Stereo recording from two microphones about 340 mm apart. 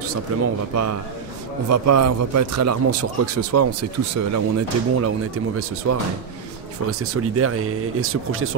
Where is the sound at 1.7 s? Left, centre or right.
Right.